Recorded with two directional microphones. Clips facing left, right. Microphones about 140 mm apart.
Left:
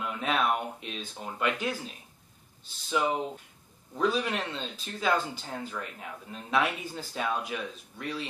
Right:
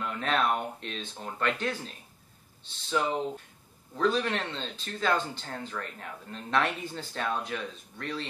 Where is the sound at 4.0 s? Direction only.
5° left (ahead or behind).